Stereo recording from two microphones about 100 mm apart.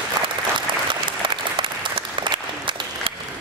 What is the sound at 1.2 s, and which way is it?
Applause, 55° right (ahead or behind).